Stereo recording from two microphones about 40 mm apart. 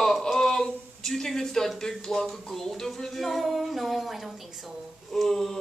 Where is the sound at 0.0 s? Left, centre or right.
Centre.